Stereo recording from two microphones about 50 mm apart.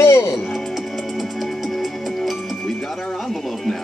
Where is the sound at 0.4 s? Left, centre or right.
Centre.